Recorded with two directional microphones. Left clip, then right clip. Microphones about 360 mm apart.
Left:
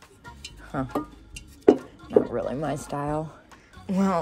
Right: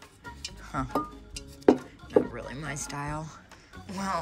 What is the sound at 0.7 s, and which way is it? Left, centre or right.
Speech, centre.